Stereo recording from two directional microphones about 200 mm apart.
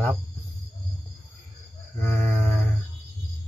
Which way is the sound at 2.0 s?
10° left (ahead or behind).